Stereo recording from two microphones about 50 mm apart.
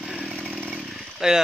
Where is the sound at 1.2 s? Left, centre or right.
Centre.